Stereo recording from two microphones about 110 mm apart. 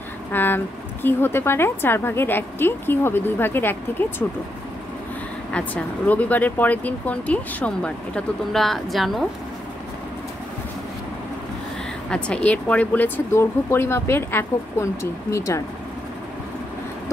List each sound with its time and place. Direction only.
0.3 s speech: 20° left (ahead or behind)
5.5 s speech: 10° left (ahead or behind)
12.1 s speech: 10° left (ahead or behind); by 15.6 s 25° left (ahead or behind)